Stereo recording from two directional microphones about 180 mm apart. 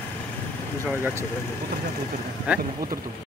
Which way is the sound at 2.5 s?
5° right (ahead or behind).